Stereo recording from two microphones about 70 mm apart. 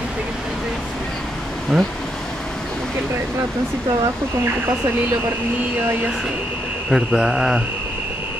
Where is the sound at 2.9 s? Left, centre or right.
Right.